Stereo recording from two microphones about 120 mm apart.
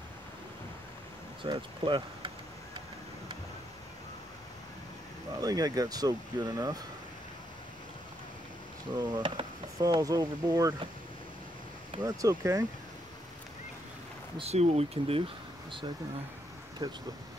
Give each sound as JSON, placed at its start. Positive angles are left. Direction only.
{"t": 1.4, "sound": "speech", "side_deg": -40}
{"t": 5.4, "sound": "speech", "side_deg": -30}
{"t": 8.9, "sound": "speech", "side_deg": -40}
{"t": 12.0, "sound": "speech", "side_deg": -25}
{"t": 14.5, "sound": "speech", "side_deg": -60}
{"t": 16.8, "sound": "speech", "side_deg": -35}